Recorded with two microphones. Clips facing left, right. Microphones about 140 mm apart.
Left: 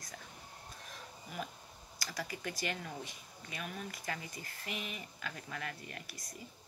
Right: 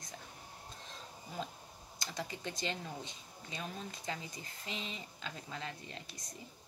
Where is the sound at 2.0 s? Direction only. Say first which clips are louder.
Even; 25° right (ahead or behind).